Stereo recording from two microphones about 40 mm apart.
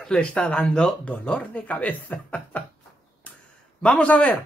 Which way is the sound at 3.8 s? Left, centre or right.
Left.